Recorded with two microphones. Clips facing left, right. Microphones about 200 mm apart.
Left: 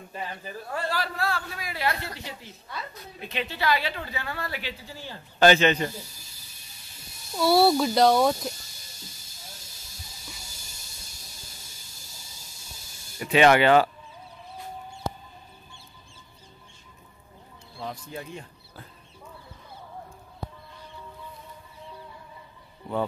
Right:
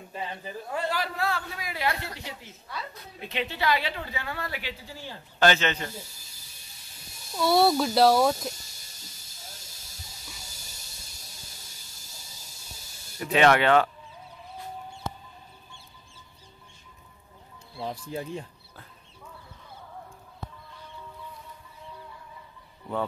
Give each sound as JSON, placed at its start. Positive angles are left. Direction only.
{"t": 0.1, "sound": "a man's voice", "side_deg": -20}
{"t": 5.4, "sound": "speech", "side_deg": 15}
{"t": 7.3, "sound": "speech", "side_deg": 5}
{"t": 13.2, "sound": "speech", "side_deg": 5}
{"t": 17.8, "sound": "speech", "side_deg": -30}